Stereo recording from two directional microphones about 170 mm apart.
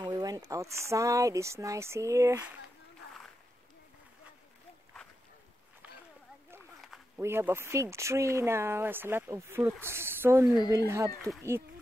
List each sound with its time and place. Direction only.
0.0 s speech: 20° right (ahead or behind)
7.2 s speech: 15° right (ahead or behind)